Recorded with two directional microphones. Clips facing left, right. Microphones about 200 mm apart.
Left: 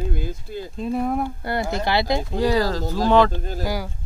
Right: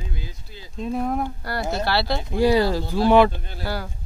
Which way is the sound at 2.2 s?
15° right (ahead or behind).